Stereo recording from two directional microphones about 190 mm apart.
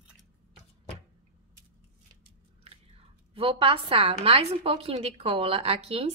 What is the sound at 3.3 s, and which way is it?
A woman's voice, 30° right (ahead or behind).